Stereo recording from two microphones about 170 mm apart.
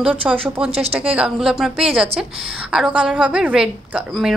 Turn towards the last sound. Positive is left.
turn(degrees=-5)  # may be behind; listen again after turning